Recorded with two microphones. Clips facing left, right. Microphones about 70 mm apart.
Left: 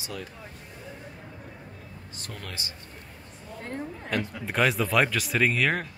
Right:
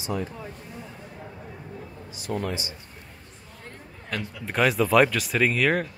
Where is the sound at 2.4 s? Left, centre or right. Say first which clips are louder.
Right 9 dB; centre.